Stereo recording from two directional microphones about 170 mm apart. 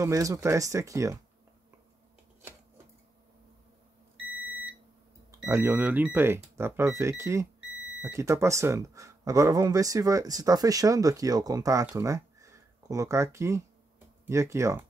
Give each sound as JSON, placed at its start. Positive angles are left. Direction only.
{"t": 0.0, "sound": "speech", "side_deg": -20}
{"t": 5.3, "sound": "speech", "side_deg": -15}